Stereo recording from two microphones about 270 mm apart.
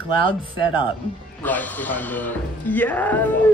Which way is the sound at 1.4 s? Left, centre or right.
Centre.